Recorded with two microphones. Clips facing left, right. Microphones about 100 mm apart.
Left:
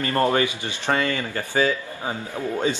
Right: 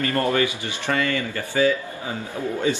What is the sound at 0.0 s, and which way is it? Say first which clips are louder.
Speech: left 1 dB; 30° left (ahead or behind).